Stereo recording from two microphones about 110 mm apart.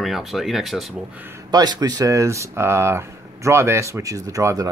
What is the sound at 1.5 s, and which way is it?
Speech, 40° right (ahead or behind).